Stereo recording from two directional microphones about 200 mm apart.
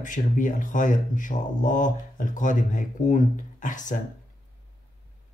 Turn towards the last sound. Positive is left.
turn(degrees=40)  # may be behind; listen again after turning